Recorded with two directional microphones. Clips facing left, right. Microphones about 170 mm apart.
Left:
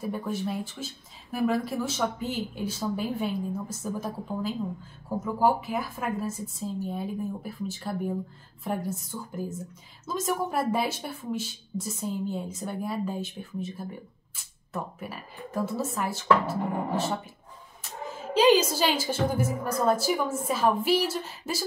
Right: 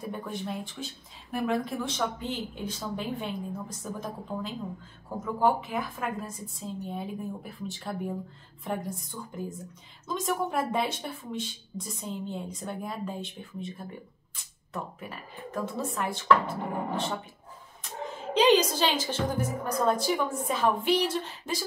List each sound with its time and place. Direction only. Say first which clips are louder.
0.0 s speech: left 4 dB; 5° left (ahead or behind)
18.3 s speech: left 1 dB; 5° left (ahead or behind)